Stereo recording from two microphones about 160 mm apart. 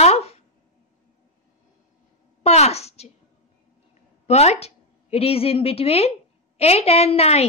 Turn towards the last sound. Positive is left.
turn(degrees=40)  # may be behind; listen again after turning